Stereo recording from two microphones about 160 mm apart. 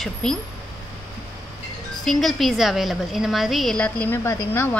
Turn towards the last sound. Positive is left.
turn(degrees=15)  # may be behind; listen again after turning